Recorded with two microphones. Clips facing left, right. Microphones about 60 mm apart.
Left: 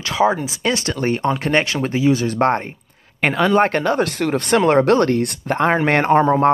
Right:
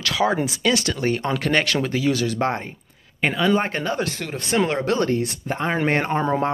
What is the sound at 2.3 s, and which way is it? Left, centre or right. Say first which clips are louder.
Speech: left 6 dB; left.